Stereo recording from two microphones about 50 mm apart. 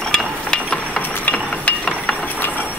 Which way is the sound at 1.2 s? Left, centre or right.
Left.